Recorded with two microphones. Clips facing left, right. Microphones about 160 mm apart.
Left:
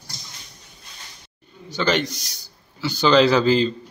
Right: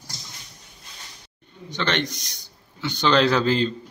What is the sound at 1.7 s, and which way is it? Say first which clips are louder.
A man's voice: left 4 dB; 5° left (ahead or behind).